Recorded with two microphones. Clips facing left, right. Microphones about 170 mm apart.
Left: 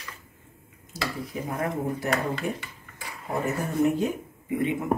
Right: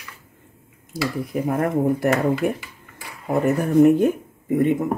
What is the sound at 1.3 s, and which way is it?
Speech, 60° right (ahead or behind).